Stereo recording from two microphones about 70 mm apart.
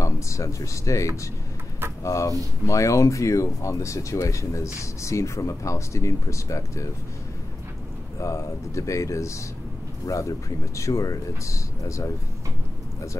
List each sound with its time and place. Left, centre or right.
0.0 s speech: left
8.2 s speech: left